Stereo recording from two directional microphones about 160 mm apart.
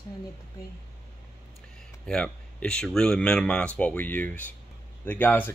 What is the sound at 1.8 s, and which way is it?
A man's voice, 5° left (ahead or behind).